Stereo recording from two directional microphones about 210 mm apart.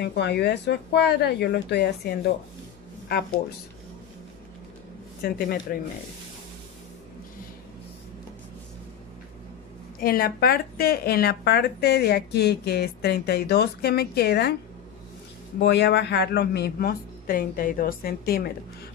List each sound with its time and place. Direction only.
0.0 s speech: 50° left (ahead or behind)
5.2 s speech: 45° left (ahead or behind)
9.9 s speech: 45° left (ahead or behind)
15.6 s speech: 55° left (ahead or behind)